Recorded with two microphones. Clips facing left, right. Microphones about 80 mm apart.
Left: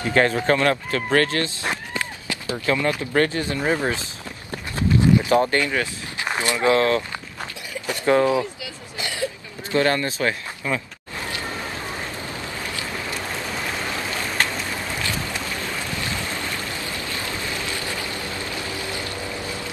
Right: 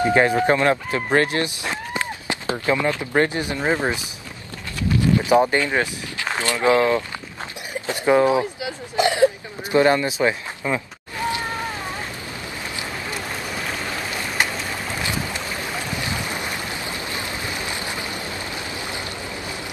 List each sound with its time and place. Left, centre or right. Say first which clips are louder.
0.0 s speech: right 3 dB; centre
1.7 s run: right 1 dB; right
3.1 s speech: even; right
5.2 s speech: right 2 dB; centre
6.2 s a sound: even; centre
6.6 s speech: right 1 dB; centre
8.4 s a sound: right 2 dB; right
15.9 s boat: right 1 dB; centre